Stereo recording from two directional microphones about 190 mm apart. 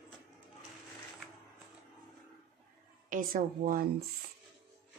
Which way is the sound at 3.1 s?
45° right (ahead or behind).